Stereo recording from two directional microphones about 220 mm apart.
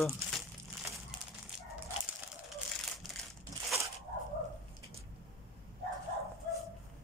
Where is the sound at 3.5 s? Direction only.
15° right (ahead or behind).